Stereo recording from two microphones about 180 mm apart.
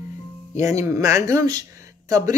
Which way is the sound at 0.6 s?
15° right (ahead or behind).